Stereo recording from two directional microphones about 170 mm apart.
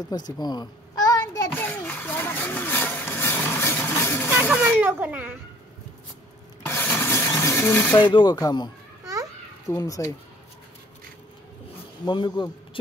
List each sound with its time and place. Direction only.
0.1 s a sound: 25° left (ahead or behind)
1.7 s vehicle: 10° left (ahead or behind)
4.3 s speech: 10° right (ahead or behind)
6.6 s rub: 15° left (ahead or behind)
8.0 s speech: 25° left (ahead or behind)
9.0 s babbling: 20° right (ahead or behind)
9.7 s speech: 20° left (ahead or behind)
12.0 s speech: 25° left (ahead or behind)